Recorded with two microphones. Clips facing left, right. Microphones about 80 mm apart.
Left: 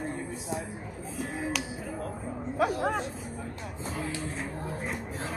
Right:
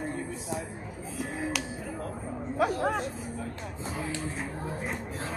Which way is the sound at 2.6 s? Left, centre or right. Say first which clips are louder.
Even; centre.